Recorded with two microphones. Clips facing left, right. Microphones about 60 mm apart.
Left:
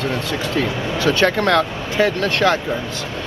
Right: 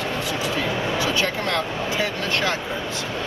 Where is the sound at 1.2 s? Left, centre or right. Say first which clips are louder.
Left 8 dB; left.